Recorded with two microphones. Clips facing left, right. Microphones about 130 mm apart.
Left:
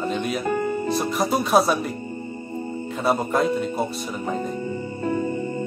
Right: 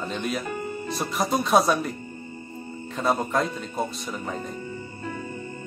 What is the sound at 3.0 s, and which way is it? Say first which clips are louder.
Speech: left 3 dB; 5° left (ahead or behind).